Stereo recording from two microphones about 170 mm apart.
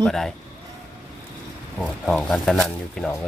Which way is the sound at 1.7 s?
5° left (ahead or behind).